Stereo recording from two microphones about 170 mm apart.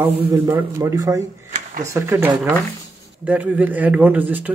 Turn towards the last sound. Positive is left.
turn(degrees=-10)  # may be behind; listen again after turning